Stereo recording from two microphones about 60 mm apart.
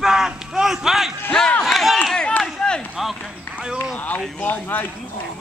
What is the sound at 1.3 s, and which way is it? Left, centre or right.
Speech, centre.